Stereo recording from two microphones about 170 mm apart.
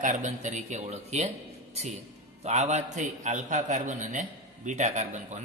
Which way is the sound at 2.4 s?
40° right (ahead or behind).